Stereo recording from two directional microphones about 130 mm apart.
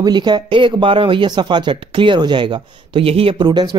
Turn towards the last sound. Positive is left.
turn(degrees=-35)  # may be behind; listen again after turning